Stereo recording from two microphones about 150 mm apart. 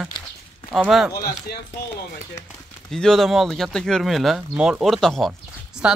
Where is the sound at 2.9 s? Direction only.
5° left (ahead or behind).